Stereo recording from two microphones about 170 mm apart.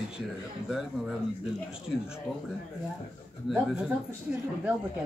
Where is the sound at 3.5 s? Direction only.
5° right (ahead or behind).